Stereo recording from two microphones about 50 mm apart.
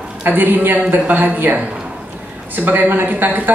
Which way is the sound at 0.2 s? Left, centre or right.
Right.